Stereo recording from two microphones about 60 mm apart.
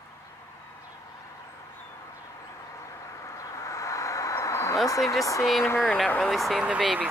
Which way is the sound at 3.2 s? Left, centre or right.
Left.